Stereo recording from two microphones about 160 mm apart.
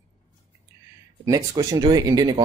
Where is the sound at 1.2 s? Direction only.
20° right (ahead or behind).